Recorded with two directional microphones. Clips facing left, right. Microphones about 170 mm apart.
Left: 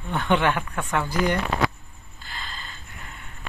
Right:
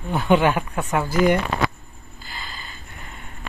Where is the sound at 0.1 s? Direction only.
10° right (ahead or behind).